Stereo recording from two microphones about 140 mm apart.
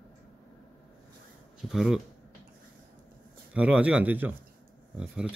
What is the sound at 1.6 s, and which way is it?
Speech, 5° right (ahead or behind).